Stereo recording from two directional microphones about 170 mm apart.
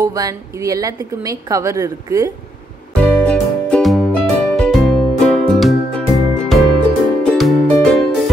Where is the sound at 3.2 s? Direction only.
5° left (ahead or behind).